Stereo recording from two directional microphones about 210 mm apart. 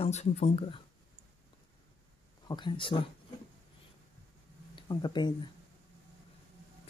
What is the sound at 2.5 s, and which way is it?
Speech, 20° left (ahead or behind).